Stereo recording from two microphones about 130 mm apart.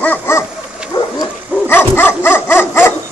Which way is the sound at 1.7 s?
15° left (ahead or behind).